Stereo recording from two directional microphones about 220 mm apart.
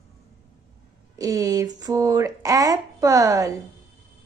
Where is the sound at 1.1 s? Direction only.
15° right (ahead or behind).